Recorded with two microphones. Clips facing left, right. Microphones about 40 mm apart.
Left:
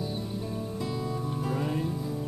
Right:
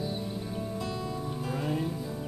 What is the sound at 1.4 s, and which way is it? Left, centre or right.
Music, centre.